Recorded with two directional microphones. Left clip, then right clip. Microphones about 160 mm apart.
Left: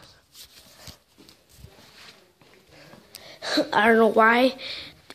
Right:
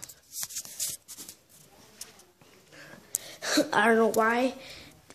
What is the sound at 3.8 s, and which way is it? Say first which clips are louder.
Speech: left 7 dB; 15° left (ahead or behind).